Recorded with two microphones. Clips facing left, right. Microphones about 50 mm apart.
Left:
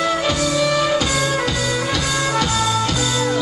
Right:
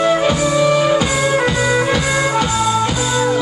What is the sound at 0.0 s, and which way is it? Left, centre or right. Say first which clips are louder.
Music: right 5 dB; right.